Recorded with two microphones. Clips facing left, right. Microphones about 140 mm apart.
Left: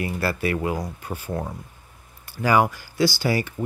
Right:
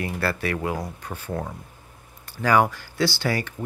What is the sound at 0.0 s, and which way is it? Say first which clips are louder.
Speech: left 1 dB; 5° left (ahead or behind).